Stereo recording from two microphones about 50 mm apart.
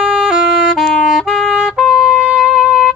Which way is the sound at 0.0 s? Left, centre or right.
Centre.